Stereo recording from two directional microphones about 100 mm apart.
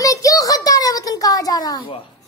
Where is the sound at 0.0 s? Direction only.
35° left (ahead or behind).